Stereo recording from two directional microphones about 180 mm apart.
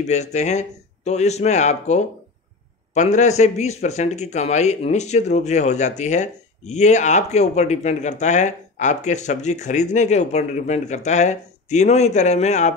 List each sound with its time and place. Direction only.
0.0 s speech: 40° left (ahead or behind)